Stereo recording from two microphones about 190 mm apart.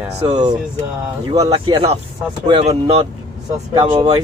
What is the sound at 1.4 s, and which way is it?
Speech, 30° right (ahead or behind).